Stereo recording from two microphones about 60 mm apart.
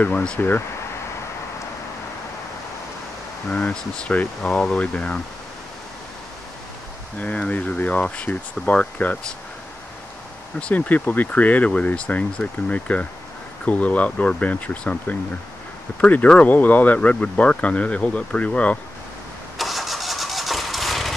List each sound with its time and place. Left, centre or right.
0.4 s speech: left
3.4 s speech: centre
7.2 s speech: left
10.6 s speech: left
19.6 s engine starting: centre